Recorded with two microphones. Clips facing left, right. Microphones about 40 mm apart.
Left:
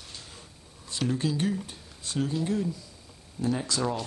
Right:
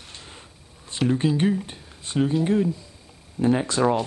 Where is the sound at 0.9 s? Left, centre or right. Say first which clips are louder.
Right 6 dB; right.